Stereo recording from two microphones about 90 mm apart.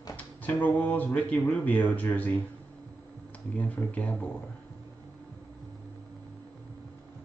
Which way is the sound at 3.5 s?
15° left (ahead or behind).